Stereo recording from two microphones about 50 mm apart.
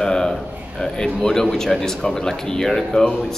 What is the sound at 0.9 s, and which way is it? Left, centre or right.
Speech, centre.